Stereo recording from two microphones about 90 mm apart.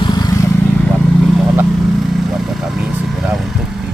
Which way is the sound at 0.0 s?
50° left (ahead or behind).